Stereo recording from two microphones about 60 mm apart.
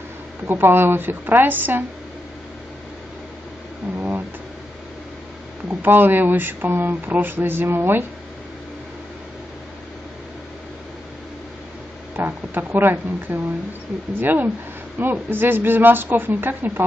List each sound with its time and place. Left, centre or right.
0.5 s speech: right
3.9 s a sound: right
5.7 s speech: right
12.2 s speech: right